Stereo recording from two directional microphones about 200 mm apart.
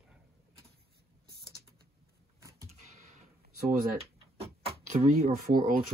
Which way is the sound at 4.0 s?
30° right (ahead or behind).